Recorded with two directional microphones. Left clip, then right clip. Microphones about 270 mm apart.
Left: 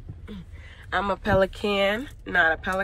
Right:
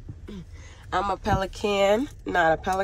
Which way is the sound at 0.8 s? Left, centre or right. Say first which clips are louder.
Even; centre.